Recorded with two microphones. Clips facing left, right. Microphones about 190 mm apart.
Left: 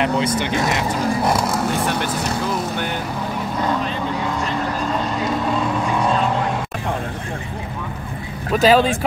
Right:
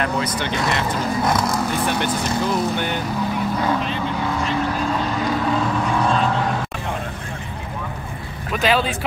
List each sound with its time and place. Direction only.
0.0 s speech: 25° left (ahead or behind)
0.7 s speech: 10° left (ahead or behind)
8.5 s speech: 40° left (ahead or behind)